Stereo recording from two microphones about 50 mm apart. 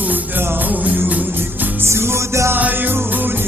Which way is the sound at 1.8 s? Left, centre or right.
Right.